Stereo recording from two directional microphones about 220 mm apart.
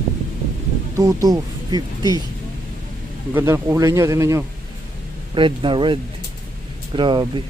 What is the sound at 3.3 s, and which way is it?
Speech, 10° right (ahead or behind).